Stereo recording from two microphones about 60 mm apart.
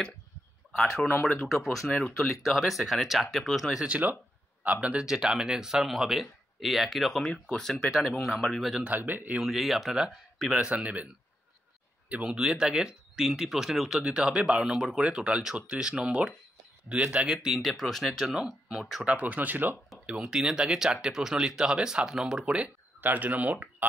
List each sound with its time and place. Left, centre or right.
0.7 s speech: centre
3.8 s speech: right; by 8.8 s centre
8.8 s speech: right
9.4 s speech: centre
10.5 s speech: right
12.2 s speech: centre
17.6 s speech: centre
19.0 s speech: right
20.1 s speech: centre
22.9 s speech: right